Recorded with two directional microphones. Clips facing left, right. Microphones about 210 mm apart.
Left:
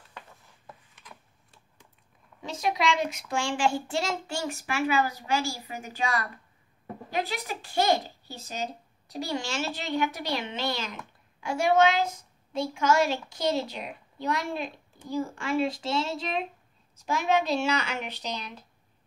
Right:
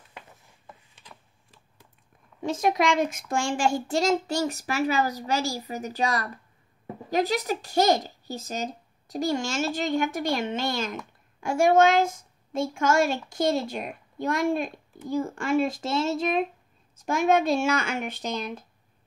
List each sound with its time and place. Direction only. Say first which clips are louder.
2.4 s a child's voice: right 4 dB; 50° right (ahead or behind)